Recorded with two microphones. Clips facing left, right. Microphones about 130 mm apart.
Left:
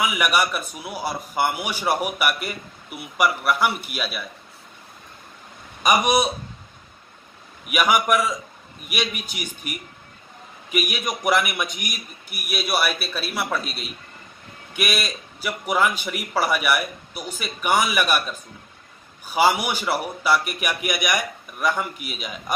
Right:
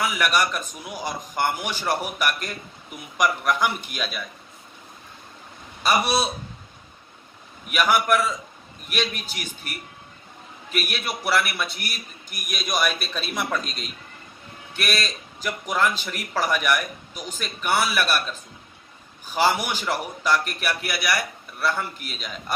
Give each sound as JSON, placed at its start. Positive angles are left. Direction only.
{"t": 0.0, "sound": "a man's voice", "side_deg": 10}
{"t": 5.8, "sound": "speech", "side_deg": 15}
{"t": 7.7, "sound": "a man's voice", "side_deg": 10}